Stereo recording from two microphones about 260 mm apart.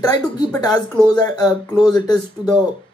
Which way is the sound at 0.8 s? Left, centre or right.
Centre.